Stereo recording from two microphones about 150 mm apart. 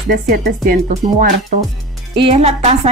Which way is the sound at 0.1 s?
85° right.